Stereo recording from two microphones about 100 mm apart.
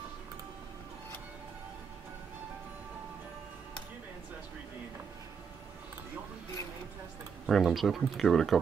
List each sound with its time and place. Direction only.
7.4 s speech: centre (ahead or behind)